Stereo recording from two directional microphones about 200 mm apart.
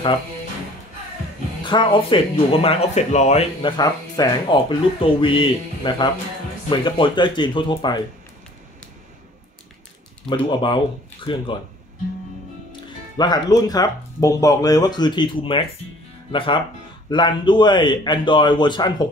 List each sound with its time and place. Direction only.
1.6 s speech: 25° left (ahead or behind)
10.3 s speech: 25° left (ahead or behind)
13.2 s speech: 20° left (ahead or behind)